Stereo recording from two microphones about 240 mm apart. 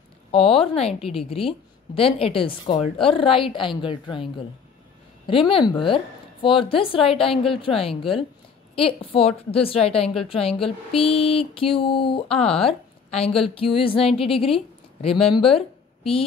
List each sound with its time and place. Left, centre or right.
0.3 s a woman's voice: left
5.5 s a woman's voice: left